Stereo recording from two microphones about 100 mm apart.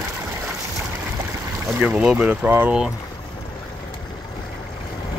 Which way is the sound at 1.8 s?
15° right (ahead or behind).